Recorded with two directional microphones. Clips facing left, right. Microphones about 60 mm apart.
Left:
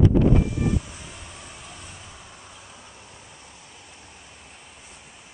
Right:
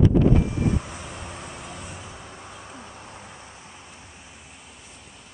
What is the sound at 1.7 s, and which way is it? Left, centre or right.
Vehicle, right.